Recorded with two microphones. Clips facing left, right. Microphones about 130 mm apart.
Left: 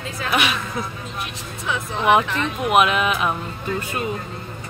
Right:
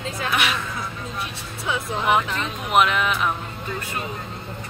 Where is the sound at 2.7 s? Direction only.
15° left (ahead or behind).